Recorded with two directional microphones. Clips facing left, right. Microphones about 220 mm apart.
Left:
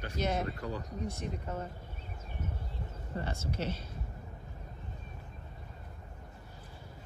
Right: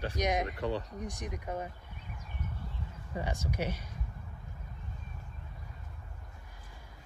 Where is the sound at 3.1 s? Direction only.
15° right (ahead or behind).